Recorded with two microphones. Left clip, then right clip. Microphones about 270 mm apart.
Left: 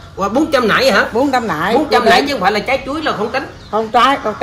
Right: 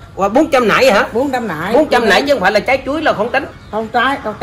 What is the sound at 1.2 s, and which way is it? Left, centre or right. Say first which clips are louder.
Speech: left 3 dB; left.